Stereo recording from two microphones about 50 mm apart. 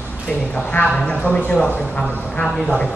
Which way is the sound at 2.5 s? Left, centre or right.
Centre.